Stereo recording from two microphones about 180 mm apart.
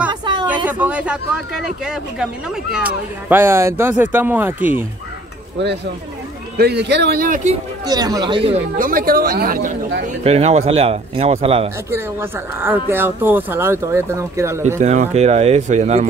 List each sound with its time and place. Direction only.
0.1 s a sound: 25° right (ahead or behind)
0.7 s speech: 10° right (ahead or behind)
6.6 s speech: 70° right (ahead or behind); by 7.5 s 45° right (ahead or behind)
7.8 s speech: 20° right (ahead or behind)
8.7 s speech: 50° right (ahead or behind); by 11.7 s 35° right (ahead or behind)
11.9 s speech: 15° right (ahead or behind)
14.8 s speech: 40° right (ahead or behind)